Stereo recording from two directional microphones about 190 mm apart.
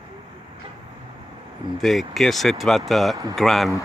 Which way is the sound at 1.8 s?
Centre (ahead or behind).